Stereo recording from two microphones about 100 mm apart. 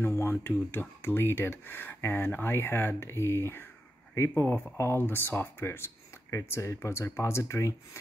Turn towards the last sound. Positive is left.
turn(degrees=30)  # may be behind; listen again after turning